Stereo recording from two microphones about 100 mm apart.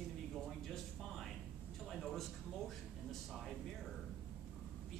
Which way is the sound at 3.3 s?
Centre (ahead or behind).